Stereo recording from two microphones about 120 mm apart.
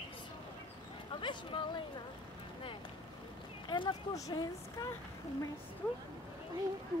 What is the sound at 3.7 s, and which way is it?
Speech, 40° left (ahead or behind).